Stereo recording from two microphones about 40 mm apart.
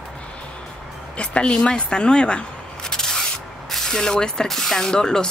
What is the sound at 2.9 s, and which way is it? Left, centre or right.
Spray, centre.